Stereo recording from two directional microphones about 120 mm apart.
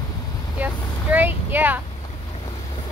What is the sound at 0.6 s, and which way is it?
Vehicle, 15° right (ahead or behind).